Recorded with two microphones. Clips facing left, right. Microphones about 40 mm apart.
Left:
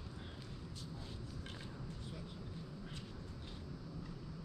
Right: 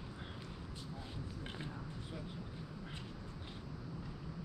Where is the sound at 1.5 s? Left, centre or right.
Right.